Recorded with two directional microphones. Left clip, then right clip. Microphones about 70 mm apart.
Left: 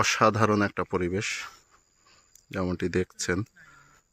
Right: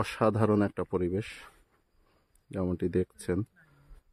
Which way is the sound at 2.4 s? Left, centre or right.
Right.